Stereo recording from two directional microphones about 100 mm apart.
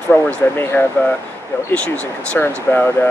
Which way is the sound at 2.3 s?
20° left (ahead or behind).